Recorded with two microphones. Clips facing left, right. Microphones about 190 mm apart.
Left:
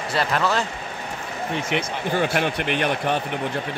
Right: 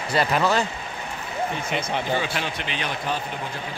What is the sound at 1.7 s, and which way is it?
Speech, 55° left (ahead or behind).